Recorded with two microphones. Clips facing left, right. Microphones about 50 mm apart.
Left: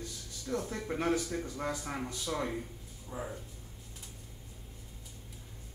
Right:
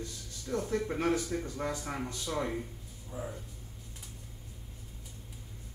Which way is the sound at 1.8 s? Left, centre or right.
Centre.